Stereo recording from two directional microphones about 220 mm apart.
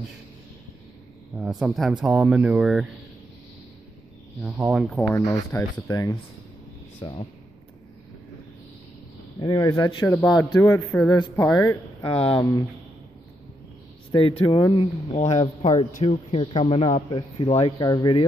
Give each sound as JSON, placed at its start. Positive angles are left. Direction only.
{"t": 1.3, "sound": "speech", "side_deg": -5}
{"t": 4.4, "sound": "speech", "side_deg": -5}
{"t": 9.4, "sound": "speech", "side_deg": 20}
{"t": 12.0, "sound": "speech", "side_deg": 25}
{"t": 14.1, "sound": "speech", "side_deg": 25}